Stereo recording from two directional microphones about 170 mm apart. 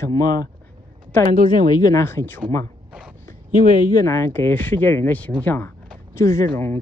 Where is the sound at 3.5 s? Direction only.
50° right (ahead or behind).